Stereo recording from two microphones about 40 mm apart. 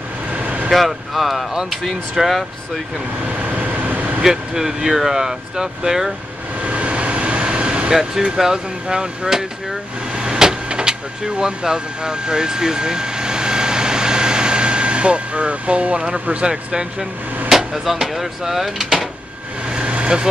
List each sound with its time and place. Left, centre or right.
0.3 s vehicle: right
0.7 s speech: centre
3.2 s vehicle: right
4.2 s speech: centre
6.6 s vehicle: right
7.9 s speech: centre
17.5 s hammer: centre
18.0 s speech: centre
19.7 s vehicle: right